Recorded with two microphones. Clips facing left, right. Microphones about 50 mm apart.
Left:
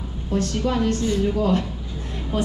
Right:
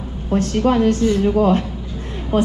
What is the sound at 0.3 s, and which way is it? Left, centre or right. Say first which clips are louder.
A woman's voice: right 6 dB; right.